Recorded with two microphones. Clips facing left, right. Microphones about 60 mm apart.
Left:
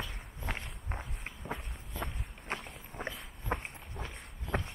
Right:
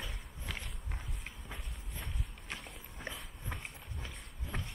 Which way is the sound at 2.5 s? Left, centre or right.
Left.